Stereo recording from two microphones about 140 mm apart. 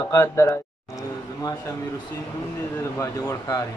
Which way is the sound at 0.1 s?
20° left (ahead or behind).